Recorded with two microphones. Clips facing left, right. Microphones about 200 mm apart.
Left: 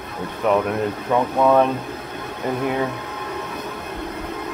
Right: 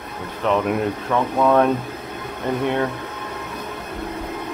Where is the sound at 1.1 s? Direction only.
15° left (ahead or behind).